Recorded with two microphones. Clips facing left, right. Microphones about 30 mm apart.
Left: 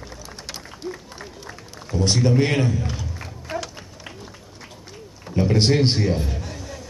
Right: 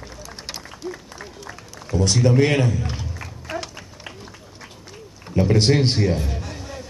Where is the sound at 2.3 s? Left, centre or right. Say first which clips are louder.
Right 2 dB; centre.